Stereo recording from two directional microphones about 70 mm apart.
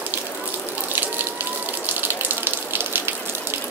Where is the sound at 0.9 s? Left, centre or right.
Right.